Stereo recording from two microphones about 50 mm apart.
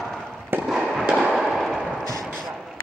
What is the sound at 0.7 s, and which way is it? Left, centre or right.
Fireworks, centre.